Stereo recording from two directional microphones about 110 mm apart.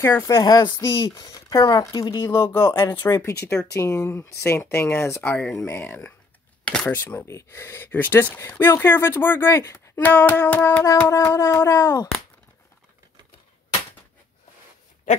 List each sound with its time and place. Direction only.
0.0 s speech: 25° left (ahead or behind)
0.4 s speech: 40° left (ahead or behind)
2.0 s speech: 45° left (ahead or behind)
2.2 s speech: 25° left (ahead or behind)
7.2 s speech: 25° left (ahead or behind)